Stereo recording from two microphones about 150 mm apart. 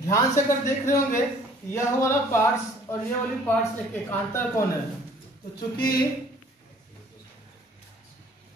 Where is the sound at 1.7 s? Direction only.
20° left (ahead or behind).